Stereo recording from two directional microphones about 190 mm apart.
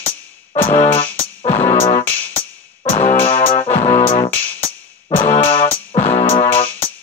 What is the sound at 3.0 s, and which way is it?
Music, 30° left (ahead or behind).